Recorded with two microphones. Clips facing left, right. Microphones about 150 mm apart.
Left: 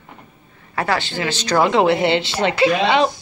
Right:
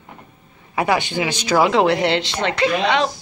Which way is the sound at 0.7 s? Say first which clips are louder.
Right 2 dB; 15° right (ahead or behind).